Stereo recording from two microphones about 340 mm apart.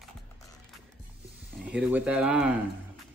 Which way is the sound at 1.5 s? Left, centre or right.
Centre.